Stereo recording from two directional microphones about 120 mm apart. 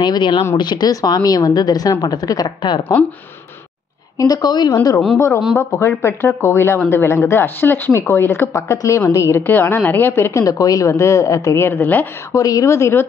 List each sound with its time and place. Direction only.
0.0 s a woman's voice: 40° left (ahead or behind)
4.2 s a woman's voice: 35° left (ahead or behind)
5.6 s speech: 20° left (ahead or behind)
10.4 s speech: 30° left (ahead or behind)
12.4 s speech: 30° left (ahead or behind)